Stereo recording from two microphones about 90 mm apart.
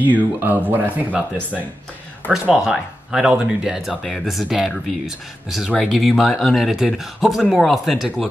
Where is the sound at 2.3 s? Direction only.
10° right (ahead or behind).